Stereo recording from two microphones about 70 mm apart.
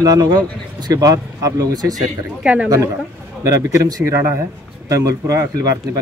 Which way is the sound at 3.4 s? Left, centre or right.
Right.